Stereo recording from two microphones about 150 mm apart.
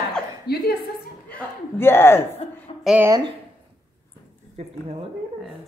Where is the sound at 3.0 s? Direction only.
20° right (ahead or behind).